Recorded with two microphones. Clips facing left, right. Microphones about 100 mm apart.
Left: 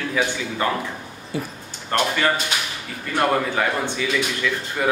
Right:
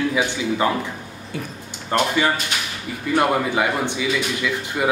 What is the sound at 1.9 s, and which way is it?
Speech, 10° right (ahead or behind).